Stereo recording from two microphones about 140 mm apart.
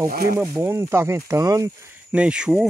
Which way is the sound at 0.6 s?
15° right (ahead or behind).